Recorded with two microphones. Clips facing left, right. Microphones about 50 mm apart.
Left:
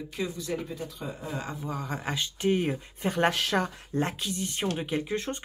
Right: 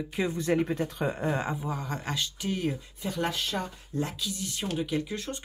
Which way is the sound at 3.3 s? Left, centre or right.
Left.